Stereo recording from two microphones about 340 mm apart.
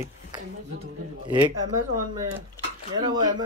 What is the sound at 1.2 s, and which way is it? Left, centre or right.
Speech, centre.